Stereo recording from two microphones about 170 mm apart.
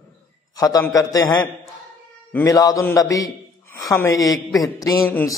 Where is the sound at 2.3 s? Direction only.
20° left (ahead or behind).